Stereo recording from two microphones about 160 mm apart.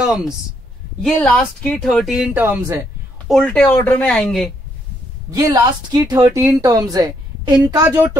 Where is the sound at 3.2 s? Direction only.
5° left (ahead or behind).